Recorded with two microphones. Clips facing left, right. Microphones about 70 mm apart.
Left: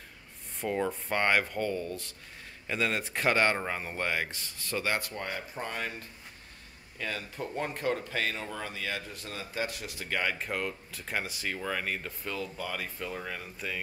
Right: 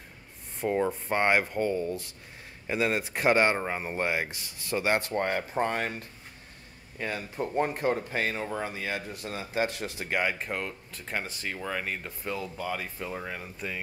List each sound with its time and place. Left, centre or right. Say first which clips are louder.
0.7 s a man's voice: right 3 dB; centre
4.7 s speech: right 5 dB; right
5.2 s speech: right 9 dB; right
7.0 s speech: right 4 dB; right
10.4 s speech: even; centre